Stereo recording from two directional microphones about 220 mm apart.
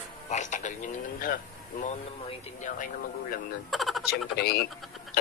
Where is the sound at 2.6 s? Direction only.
35° left (ahead or behind).